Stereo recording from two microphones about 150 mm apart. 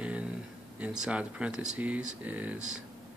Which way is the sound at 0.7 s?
10° right (ahead or behind).